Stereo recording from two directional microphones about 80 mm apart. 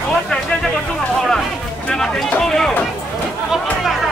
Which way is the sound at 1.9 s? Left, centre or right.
Centre.